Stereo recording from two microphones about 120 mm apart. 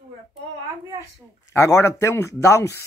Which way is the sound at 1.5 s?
25° left (ahead or behind).